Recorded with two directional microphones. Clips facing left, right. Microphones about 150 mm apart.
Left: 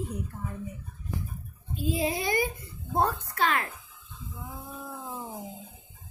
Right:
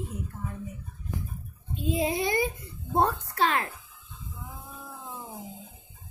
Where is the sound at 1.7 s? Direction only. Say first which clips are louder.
Right 1 dB; 25° right (ahead or behind).